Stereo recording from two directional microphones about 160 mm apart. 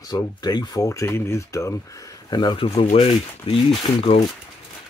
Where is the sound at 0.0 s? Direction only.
25° left (ahead or behind).